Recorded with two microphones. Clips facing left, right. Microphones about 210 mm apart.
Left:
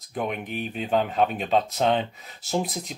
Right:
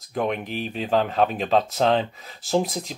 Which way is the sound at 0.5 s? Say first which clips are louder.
Right 2 dB; 30° right (ahead or behind).